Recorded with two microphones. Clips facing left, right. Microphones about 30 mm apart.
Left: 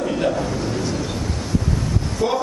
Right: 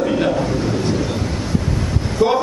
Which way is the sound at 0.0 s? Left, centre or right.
Centre.